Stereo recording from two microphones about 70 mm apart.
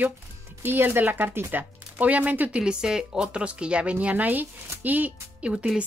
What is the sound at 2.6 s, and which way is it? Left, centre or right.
Speech, centre.